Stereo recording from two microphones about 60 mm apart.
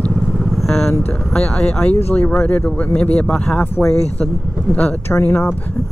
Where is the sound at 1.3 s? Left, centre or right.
Centre.